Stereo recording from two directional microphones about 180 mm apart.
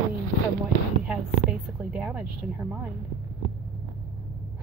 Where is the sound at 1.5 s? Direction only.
5° right (ahead or behind).